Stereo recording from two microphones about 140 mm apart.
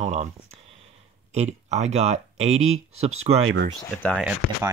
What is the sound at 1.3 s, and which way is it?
Speech, 55° right (ahead or behind).